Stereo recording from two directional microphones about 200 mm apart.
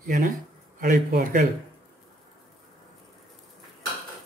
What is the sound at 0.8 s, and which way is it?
Speech, 40° right (ahead or behind).